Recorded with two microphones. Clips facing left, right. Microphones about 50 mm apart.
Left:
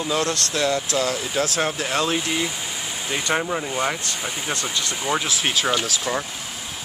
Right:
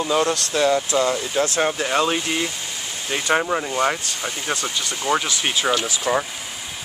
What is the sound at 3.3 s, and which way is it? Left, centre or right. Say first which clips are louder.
Speech: right 4 dB; centre.